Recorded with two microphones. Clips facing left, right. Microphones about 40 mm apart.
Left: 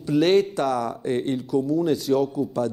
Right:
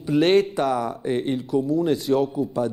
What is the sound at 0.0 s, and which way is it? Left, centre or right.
A man's voice, centre.